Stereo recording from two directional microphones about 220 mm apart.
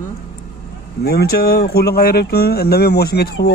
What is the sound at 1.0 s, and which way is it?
Speech, 45° left (ahead or behind).